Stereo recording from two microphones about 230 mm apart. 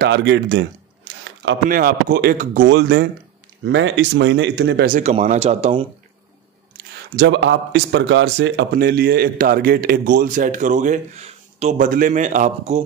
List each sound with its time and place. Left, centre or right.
0.0 s a sound: right
1.7 s speech: right
5.1 s speech: right
7.2 s speech: right